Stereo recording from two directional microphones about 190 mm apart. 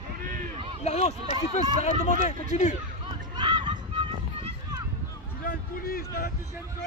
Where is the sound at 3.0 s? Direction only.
25° right (ahead or behind).